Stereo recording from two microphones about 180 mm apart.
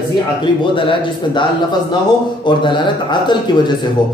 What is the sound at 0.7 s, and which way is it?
Speech, 25° left (ahead or behind).